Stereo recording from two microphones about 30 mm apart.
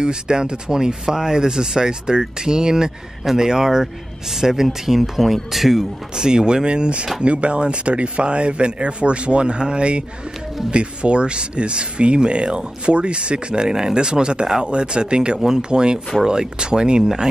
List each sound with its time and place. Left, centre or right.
0.0 s speech: right; by 5.9 s centre
6.1 s speech: right